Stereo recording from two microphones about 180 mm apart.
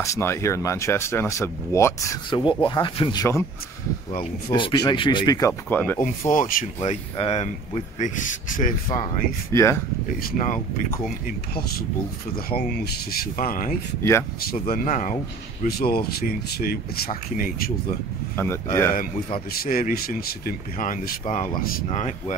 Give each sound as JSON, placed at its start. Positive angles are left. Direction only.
{"t": 0.0, "sound": "speech", "side_deg": 15}
{"t": 4.5, "sound": "speech", "side_deg": 25}
{"t": 5.7, "sound": "speech", "side_deg": 10}
{"t": 6.3, "sound": "speech", "side_deg": 50}
{"t": 6.8, "sound": "speech", "side_deg": 35}
{"t": 9.5, "sound": "speech", "side_deg": 15}
{"t": 10.2, "sound": "speech", "side_deg": 45}
{"t": 12.4, "sound": "speech", "side_deg": 55}
{"t": 15.6, "sound": "speech", "side_deg": 55}
{"t": 18.3, "sound": "speech", "side_deg": 15}
{"t": 19.5, "sound": "speech", "side_deg": 55}